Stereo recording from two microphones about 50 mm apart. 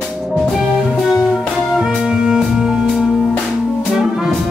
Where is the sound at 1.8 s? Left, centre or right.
Centre.